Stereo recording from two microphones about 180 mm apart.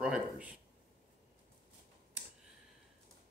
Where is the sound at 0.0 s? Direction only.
5° right (ahead or behind).